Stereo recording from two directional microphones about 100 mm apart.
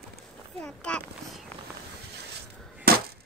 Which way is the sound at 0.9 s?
10° left (ahead or behind).